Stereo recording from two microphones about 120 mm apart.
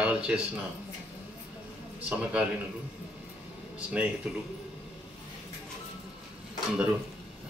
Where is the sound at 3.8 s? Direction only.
10° right (ahead or behind).